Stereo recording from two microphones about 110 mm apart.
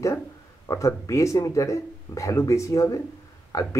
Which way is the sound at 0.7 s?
30° left (ahead or behind).